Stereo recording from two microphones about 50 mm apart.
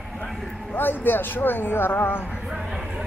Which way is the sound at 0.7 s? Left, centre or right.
Left.